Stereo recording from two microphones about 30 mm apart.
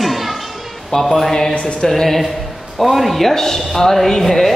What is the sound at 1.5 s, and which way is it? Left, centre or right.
Speech, left.